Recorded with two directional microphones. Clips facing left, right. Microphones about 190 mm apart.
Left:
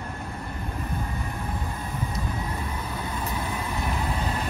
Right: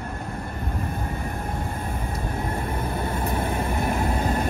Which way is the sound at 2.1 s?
50° right (ahead or behind).